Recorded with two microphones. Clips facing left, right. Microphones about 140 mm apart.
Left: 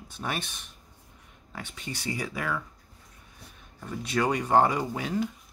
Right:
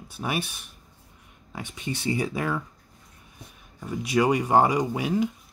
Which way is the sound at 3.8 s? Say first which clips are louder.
Right 5 dB; 10° right (ahead or behind).